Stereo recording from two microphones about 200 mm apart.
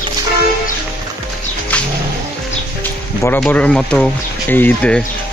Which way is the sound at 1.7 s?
5° left (ahead or behind).